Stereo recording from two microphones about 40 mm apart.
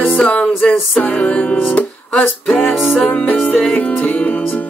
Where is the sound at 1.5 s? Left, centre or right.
Left.